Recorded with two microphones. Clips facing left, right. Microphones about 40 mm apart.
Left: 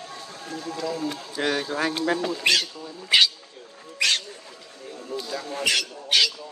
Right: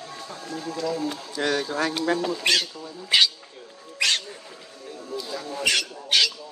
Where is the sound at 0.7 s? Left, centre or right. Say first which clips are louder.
Right 1 dB; centre.